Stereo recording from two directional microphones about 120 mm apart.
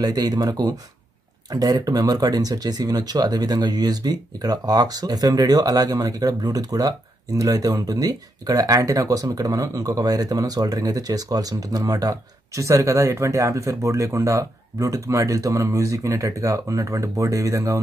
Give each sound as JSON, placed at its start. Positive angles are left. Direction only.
{"t": 0.0, "sound": "speech", "side_deg": -35}